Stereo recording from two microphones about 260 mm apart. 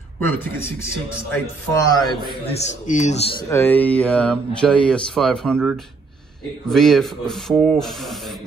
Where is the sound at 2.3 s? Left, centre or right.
Left.